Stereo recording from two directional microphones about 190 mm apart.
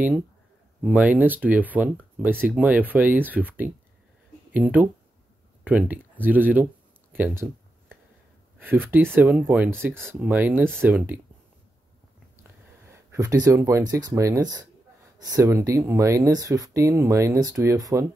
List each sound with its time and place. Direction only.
0.8 s speech: 10° right (ahead or behind)
8.5 s speech: 10° right (ahead or behind)
12.8 s speech: 15° right (ahead or behind)